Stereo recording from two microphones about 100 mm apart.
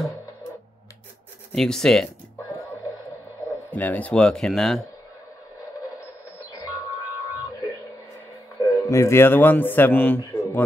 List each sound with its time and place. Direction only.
1.5 s speech: 5° left (ahead or behind)
2.5 s a sound: 30° left (ahead or behind)
3.7 s speech: 15° left (ahead or behind)
8.5 s speech: 35° left (ahead or behind); by 10.6 s 15° left (ahead or behind)